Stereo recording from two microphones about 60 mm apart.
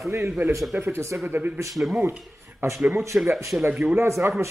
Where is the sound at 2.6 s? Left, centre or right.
Right.